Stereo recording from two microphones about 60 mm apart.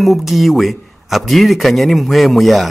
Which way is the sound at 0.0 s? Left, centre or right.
Centre.